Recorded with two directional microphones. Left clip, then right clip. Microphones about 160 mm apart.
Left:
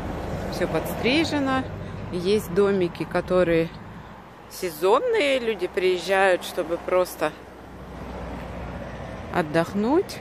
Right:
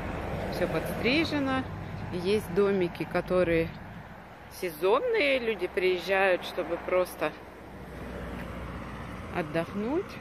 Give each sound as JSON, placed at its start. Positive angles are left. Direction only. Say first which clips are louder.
{"t": 0.5, "sound": "speech", "louder": "left 5 dB", "side_deg": 10}
{"t": 9.3, "sound": "speech", "louder": "left 8 dB", "side_deg": 25}